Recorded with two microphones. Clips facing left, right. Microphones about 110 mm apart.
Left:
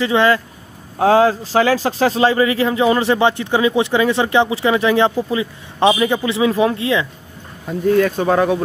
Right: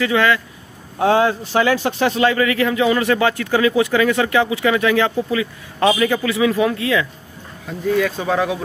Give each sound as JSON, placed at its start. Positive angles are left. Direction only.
{"t": 0.0, "sound": "a man's voice", "side_deg": 30}
{"t": 7.6, "sound": "speech", "side_deg": 40}